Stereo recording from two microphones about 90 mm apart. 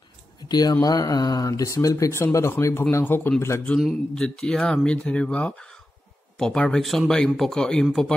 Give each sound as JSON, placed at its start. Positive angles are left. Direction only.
{"t": 0.5, "sound": "a man's voice", "side_deg": 50}
{"t": 4.1, "sound": "speech", "side_deg": 5}